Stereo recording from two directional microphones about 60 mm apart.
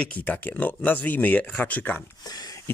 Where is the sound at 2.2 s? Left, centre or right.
Left.